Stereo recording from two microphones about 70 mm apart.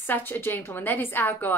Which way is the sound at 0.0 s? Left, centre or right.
Left.